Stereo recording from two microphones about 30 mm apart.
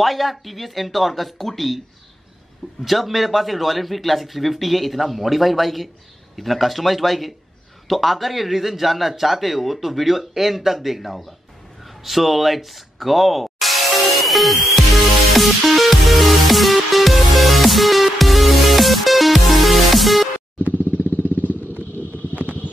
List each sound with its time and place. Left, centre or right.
0.0 s speech: centre
2.8 s speech: centre
11.8 s a sound: centre
15.3 s music: centre
20.7 s vehicle: right